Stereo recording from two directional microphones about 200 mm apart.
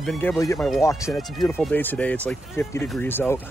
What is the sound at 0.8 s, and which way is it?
Speech, 15° left (ahead or behind).